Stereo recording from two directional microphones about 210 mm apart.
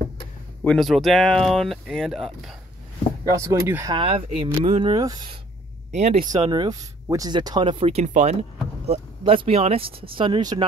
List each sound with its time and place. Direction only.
0.7 s speech: centre (ahead or behind)
3.3 s speech: 15° right (ahead or behind)
3.9 s speech: 25° right (ahead or behind)
5.9 s speech: 35° right (ahead or behind)
6.3 s speech: 20° right (ahead or behind)